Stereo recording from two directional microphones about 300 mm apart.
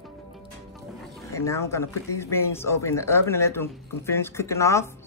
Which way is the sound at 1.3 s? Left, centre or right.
Centre.